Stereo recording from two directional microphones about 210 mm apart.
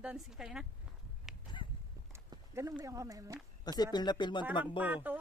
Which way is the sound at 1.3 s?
Centre (ahead or behind).